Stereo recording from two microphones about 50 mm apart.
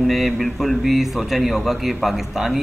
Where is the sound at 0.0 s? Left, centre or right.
Centre.